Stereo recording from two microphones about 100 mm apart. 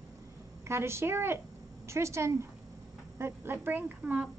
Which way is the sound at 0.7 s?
25° right (ahead or behind).